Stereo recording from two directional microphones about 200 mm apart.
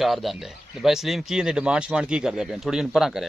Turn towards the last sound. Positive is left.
turn(degrees=0)  # may be behind; listen again after turning